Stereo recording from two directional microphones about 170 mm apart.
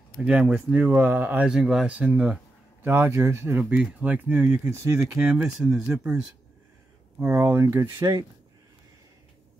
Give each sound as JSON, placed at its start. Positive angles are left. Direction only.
{"t": 0.2, "sound": "speech", "side_deg": -5}
{"t": 7.2, "sound": "speech", "side_deg": -10}